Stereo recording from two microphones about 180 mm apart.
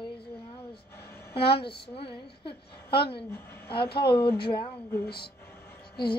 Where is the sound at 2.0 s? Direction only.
30° left (ahead or behind).